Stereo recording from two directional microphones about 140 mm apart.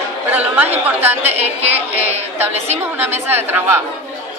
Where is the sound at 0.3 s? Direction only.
10° right (ahead or behind).